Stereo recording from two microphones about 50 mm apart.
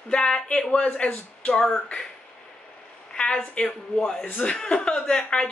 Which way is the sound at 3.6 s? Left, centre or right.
Left.